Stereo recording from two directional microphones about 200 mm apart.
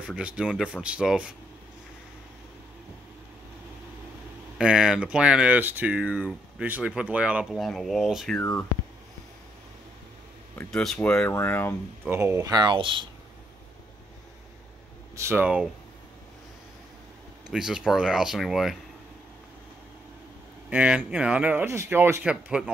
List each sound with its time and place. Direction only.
0.0 s speech: 5° right (ahead or behind)
4.6 s speech: 5° right (ahead or behind)
8.4 s speech: 10° left (ahead or behind)
10.6 s speech: 5° left (ahead or behind)
12.0 s speech: 10° right (ahead or behind)
15.1 s speech: 10° right (ahead or behind)
17.5 s speech: 5° right (ahead or behind)
20.7 s speech: 5° right (ahead or behind)